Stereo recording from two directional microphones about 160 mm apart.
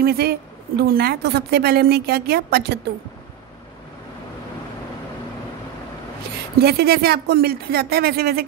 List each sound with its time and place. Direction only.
0.0 s a woman's voice: 75° right (ahead or behind)
6.6 s a woman's voice: 80° right